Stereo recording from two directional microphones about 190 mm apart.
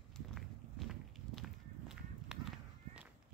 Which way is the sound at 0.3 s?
Centre (ahead or behind).